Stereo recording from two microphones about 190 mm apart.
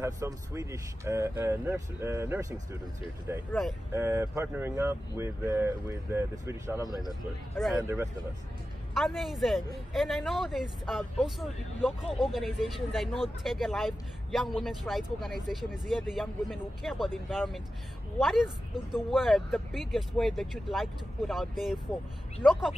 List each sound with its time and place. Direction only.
0.0 s speech: 15° right (ahead or behind)
6.8 s speech: 20° left (ahead or behind)
7.5 s speech: centre (ahead or behind)
7.8 s speech: 15° right (ahead or behind)
8.9 s speech: centre (ahead or behind)